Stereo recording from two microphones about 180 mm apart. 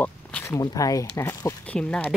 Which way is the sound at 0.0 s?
10° left (ahead or behind).